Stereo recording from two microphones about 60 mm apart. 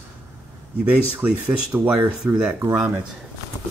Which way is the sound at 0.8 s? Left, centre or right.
Right.